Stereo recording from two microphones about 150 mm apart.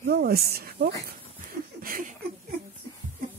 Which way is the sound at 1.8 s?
70° right (ahead or behind).